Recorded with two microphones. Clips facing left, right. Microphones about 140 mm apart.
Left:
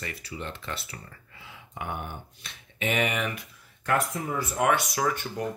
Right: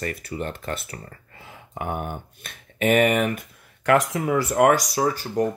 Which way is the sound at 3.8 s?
90° right.